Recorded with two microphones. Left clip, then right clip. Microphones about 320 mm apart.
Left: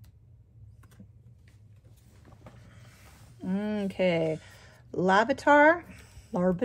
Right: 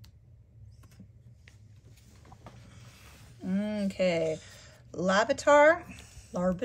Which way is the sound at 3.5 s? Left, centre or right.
Centre.